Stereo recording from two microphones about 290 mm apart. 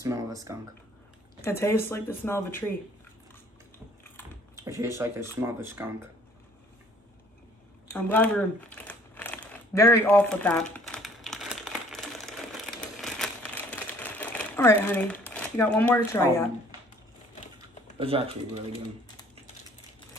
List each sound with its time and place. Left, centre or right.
0.0 s speech: centre
1.4 s speech: centre
4.6 s speech: centre
7.9 s crumpling: centre
15.2 s speech: centre
17.9 s speech: centre